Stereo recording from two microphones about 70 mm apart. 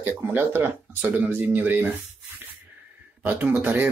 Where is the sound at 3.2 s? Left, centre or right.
Right.